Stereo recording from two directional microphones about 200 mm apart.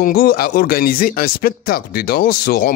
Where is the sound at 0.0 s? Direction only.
50° left (ahead or behind).